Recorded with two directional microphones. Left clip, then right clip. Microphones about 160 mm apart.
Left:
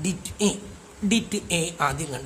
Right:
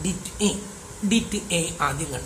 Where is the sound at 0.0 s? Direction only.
65° left (ahead or behind).